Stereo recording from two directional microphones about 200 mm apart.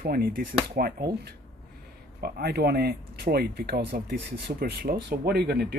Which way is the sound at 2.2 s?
50° right (ahead or behind).